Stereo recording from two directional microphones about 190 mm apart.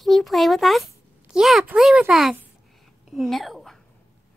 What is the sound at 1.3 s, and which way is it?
Speech, centre (ahead or behind).